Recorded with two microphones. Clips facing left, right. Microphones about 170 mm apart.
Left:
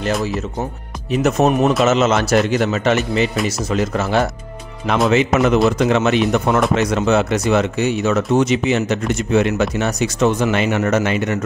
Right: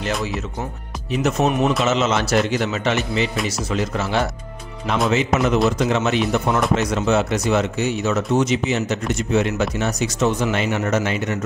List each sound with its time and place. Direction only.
1.2 s a man's voice: 45° left (ahead or behind)
4.8 s speech: 65° left (ahead or behind)